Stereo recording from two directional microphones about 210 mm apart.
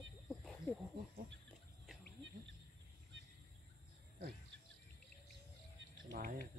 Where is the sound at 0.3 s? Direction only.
Centre (ahead or behind).